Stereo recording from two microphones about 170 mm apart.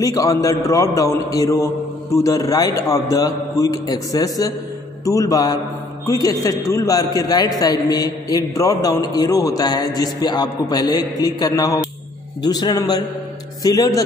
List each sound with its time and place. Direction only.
0.0 s a man's voice: 20° left (ahead or behind)